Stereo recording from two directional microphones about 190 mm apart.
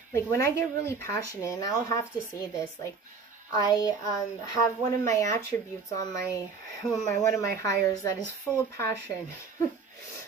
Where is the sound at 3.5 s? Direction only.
20° left (ahead or behind).